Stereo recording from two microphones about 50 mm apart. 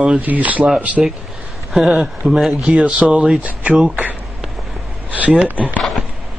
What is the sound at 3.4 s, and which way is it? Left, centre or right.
Speech, right.